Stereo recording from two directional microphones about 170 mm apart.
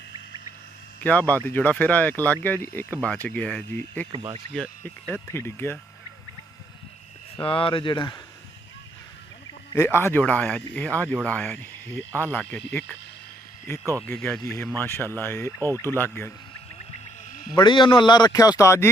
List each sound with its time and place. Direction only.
1.0 s speech: 10° left (ahead or behind)
4.1 s speech: 30° right (ahead or behind)
4.6 s speech: 10° left (ahead or behind)
7.4 s speech: 30° left (ahead or behind)
9.8 s speech: 15° left (ahead or behind)
14.0 s speech: 5° left (ahead or behind)
15.7 s speech: 15° right (ahead or behind)
16.0 s speech: 15° left (ahead or behind)
17.3 s a sound: 55° left (ahead or behind)
17.6 s speech: 30° left (ahead or behind)